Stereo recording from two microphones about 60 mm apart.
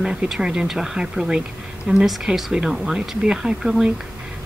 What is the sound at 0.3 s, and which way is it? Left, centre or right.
Speech, centre.